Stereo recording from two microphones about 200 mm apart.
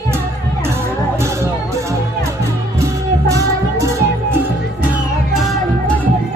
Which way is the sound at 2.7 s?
15° right (ahead or behind).